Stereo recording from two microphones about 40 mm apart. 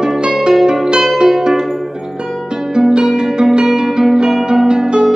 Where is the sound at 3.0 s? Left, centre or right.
Centre.